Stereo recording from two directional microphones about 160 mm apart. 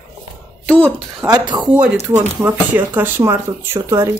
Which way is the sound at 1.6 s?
5° right (ahead or behind).